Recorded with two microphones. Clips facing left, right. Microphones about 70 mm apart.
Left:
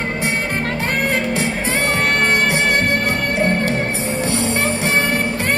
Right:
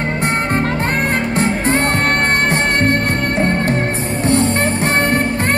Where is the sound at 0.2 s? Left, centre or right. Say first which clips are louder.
Right 5 dB; right.